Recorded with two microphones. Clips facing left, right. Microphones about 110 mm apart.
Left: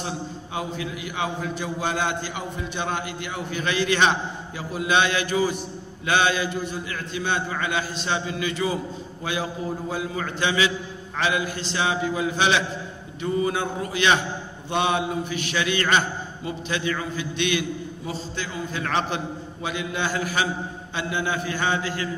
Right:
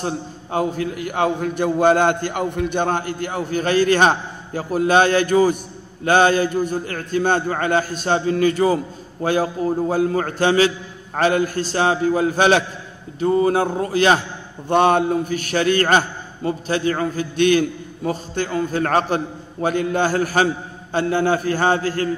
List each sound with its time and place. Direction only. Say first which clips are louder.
0.0 s a man's voice: right 5 dB; 45° right (ahead or behind)